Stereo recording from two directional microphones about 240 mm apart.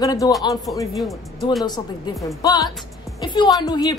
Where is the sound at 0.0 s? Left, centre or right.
Centre.